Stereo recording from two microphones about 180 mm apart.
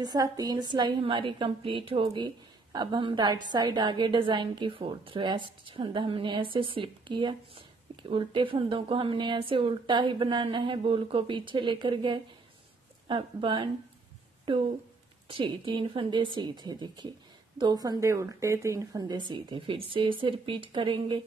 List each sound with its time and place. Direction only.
0.0 s a woman's voice: 20° right (ahead or behind)